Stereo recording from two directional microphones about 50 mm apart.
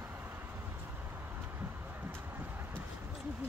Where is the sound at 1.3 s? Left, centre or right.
Right.